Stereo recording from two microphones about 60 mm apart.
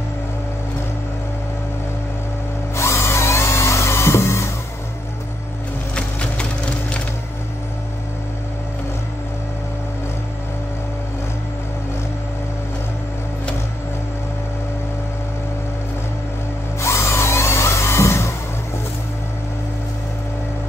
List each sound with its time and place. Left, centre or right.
2.7 s music: left
5.9 s wood: centre
16.8 s tools: left